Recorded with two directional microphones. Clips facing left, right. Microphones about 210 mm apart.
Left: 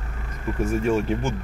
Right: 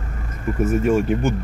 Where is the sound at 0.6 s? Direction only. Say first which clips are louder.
Right 4 dB; 5° right (ahead or behind).